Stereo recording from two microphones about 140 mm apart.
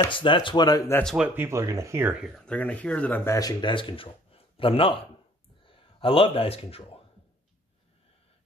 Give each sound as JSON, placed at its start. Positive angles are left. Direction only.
{"t": 0.0, "sound": "speech", "side_deg": 35}
{"t": 1.0, "sound": "speech", "side_deg": -5}
{"t": 2.3, "sound": "speech", "side_deg": 10}
{"t": 3.3, "sound": "speech", "side_deg": 25}